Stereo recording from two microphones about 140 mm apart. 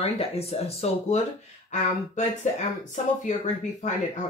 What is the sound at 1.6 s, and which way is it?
Speech, 60° left (ahead or behind).